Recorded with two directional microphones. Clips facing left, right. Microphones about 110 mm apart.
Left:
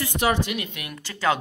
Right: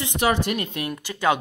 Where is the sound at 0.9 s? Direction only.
15° right (ahead or behind).